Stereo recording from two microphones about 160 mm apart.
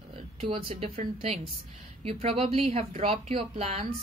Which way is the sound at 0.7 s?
40° right (ahead or behind).